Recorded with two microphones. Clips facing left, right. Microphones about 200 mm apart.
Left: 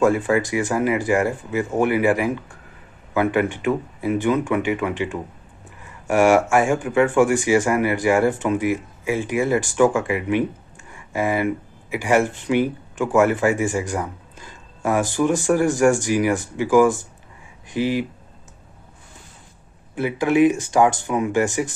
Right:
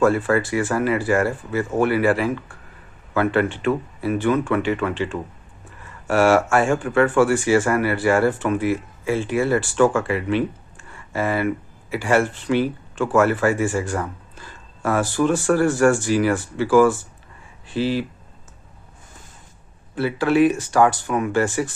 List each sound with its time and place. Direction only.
0.0 s speech: 15° left (ahead or behind)
20.0 s speech: 15° left (ahead or behind)